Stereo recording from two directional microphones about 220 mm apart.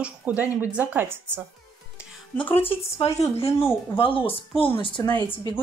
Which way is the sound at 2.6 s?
25° left (ahead or behind).